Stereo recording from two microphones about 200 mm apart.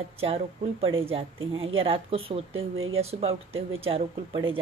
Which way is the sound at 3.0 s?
30° right (ahead or behind).